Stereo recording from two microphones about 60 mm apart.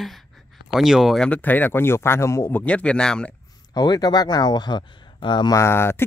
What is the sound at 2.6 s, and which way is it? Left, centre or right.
Speech, centre.